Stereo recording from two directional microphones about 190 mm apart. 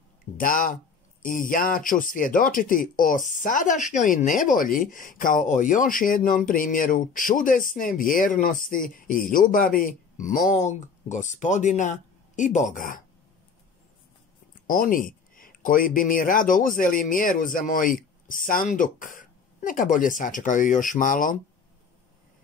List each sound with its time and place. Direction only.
0.4 s speech: 45° left (ahead or behind)
14.7 s speech: 45° left (ahead or behind)